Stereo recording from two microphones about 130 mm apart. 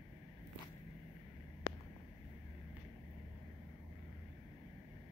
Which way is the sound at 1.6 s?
35° left (ahead or behind).